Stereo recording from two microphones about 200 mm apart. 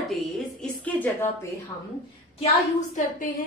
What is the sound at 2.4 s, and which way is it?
Speech, 40° left (ahead or behind).